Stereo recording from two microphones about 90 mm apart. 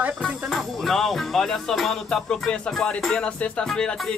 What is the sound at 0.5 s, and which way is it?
Music, 5° left (ahead or behind).